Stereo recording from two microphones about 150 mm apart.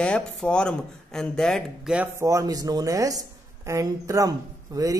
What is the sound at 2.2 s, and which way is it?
Speech, 25° right (ahead or behind).